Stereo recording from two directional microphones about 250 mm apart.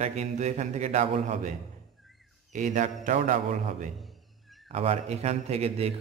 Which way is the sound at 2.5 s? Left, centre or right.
Right.